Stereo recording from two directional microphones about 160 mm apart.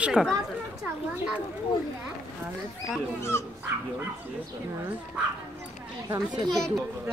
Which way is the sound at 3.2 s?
15° left (ahead or behind).